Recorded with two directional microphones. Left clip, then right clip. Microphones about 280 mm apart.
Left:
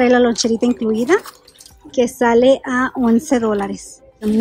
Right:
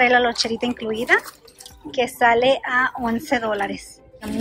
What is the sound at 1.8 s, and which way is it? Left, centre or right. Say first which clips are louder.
Speech: left 2 dB; left.